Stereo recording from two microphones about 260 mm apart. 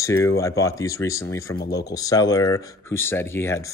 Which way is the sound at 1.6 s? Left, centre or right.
Left.